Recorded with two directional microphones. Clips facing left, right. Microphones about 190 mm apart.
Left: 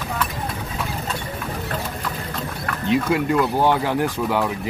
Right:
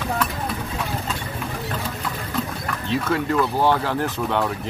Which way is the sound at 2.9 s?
10° left (ahead or behind).